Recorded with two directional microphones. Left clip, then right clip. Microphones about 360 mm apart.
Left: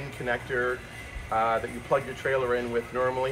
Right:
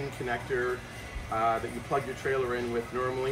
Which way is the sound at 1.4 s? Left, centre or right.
Centre.